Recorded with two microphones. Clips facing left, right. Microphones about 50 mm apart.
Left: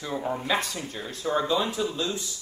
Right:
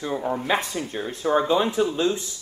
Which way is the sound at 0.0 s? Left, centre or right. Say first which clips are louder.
Right 4 dB; centre.